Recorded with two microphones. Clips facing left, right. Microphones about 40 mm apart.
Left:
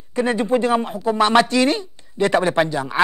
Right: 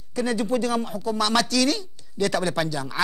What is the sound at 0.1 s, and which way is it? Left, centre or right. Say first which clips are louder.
Speech: left 5 dB; left.